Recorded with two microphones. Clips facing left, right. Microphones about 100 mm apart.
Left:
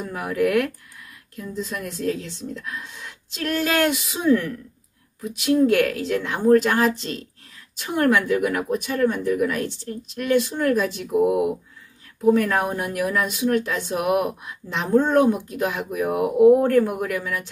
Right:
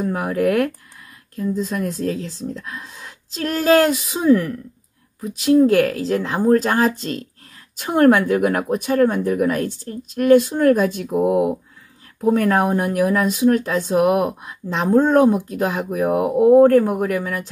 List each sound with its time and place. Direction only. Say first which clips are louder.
0.0 s speech: right 3 dB; 40° right (ahead or behind)